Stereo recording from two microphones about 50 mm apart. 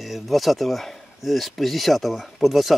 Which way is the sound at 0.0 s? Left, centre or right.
Centre.